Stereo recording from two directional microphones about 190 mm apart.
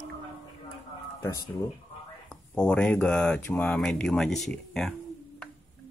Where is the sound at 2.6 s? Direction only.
5° left (ahead or behind).